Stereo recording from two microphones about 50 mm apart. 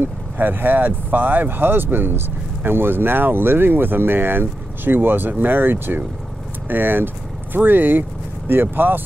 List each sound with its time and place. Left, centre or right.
0.0 s speech: right